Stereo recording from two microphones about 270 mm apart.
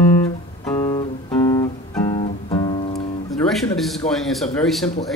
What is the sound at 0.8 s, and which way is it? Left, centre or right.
Guitar, centre.